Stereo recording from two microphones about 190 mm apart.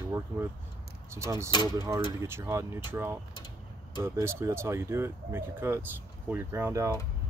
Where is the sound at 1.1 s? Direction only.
15° right (ahead or behind).